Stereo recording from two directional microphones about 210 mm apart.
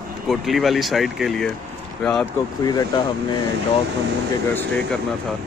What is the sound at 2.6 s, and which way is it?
Speech, 20° left (ahead or behind).